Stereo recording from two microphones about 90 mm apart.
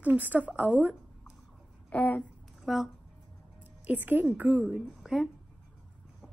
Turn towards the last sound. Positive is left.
turn(degrees=0)  # may be behind; listen again after turning